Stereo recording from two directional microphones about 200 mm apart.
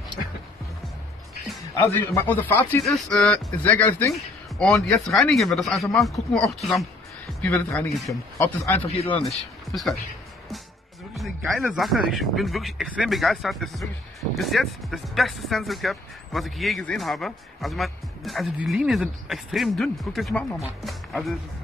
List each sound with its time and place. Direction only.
2.1 s speech: 10° left (ahead or behind)
4.6 s speech: centre (ahead or behind)
8.8 s speech: 30° left (ahead or behind)
11.1 s speech: centre (ahead or behind)